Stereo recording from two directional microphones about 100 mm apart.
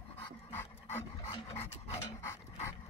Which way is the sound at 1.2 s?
85° left.